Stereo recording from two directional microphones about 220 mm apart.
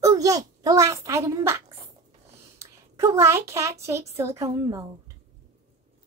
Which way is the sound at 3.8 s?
10° right (ahead or behind).